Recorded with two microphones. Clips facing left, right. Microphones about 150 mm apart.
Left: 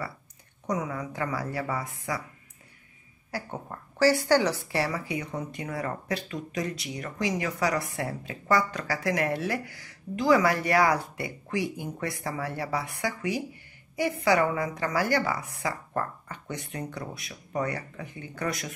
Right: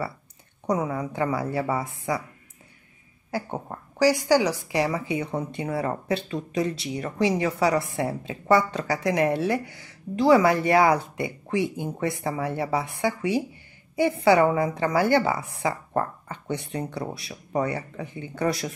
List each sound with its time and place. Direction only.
0.7 s a woman's voice: 30° right (ahead or behind)
3.3 s a woman's voice: 25° right (ahead or behind)
4.0 s a woman's voice: 15° right (ahead or behind); by 18.7 s 30° right (ahead or behind)